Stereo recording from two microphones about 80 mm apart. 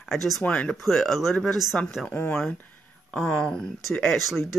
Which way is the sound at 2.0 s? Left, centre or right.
Left.